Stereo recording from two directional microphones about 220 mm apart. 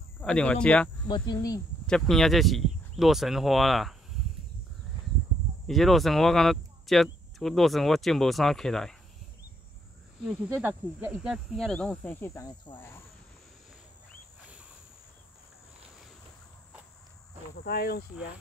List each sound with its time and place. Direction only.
0.2 s speech: 5° left (ahead or behind)
1.0 s speech: 20° left (ahead or behind)
1.9 s speech: centre (ahead or behind)
5.7 s speech: centre (ahead or behind)
10.2 s speech: 10° right (ahead or behind); by 13.0 s 10° left (ahead or behind)
17.6 s speech: 45° left (ahead or behind)